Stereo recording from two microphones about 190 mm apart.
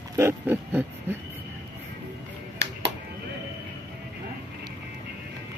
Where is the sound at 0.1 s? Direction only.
15° right (ahead or behind).